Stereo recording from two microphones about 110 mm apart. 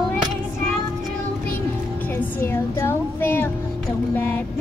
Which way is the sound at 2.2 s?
20° left (ahead or behind).